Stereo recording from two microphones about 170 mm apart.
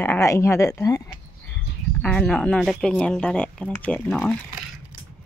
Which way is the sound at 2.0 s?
5° left (ahead or behind).